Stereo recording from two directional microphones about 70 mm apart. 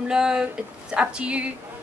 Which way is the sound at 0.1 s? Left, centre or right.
Centre.